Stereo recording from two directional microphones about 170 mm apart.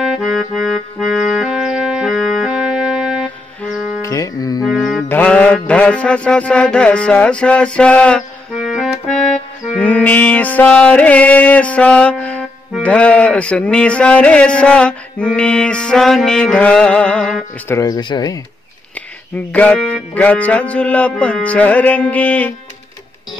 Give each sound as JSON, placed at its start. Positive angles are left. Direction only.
{"t": 0.0, "sound": "music", "side_deg": 0}
{"t": 4.0, "sound": "music", "side_deg": 20}
{"t": 4.6, "sound": "music", "side_deg": 0}
{"t": 17.7, "sound": "speech", "side_deg": 20}
{"t": 19.3, "sound": "music", "side_deg": 10}